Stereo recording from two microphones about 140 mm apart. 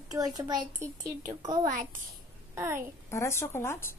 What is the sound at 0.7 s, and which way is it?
Speech, 65° right (ahead or behind).